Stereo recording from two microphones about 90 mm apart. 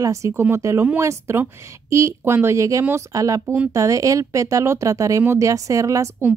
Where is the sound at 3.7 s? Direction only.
35° right (ahead or behind).